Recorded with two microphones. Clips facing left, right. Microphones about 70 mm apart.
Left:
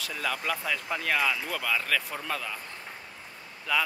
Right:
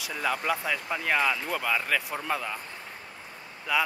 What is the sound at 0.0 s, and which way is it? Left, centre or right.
Speech, centre.